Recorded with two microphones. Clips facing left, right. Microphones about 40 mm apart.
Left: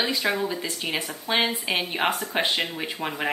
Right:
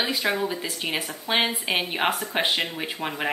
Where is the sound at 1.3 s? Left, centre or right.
Right.